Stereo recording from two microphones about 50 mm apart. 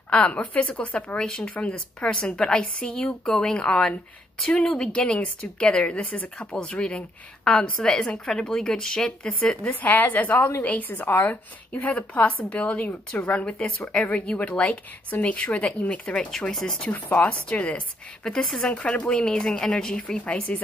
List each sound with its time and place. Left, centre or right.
0.1 s speech: left
2.9 s a woman's voice: centre
6.0 s a woman's voice: left
6.5 s a woman's voice: centre
9.7 s a woman's voice: left
11.7 s a woman's voice: left
16.3 s a woman's voice: centre
16.9 s a woman's voice: left
18.2 s a woman's voice: centre